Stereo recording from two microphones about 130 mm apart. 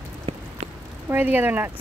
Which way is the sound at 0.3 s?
45° right (ahead or behind).